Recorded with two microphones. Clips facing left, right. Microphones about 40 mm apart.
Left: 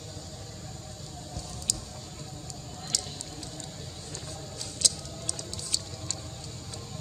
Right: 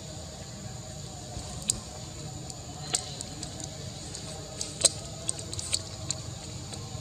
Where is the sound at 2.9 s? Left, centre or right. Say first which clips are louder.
Even; right.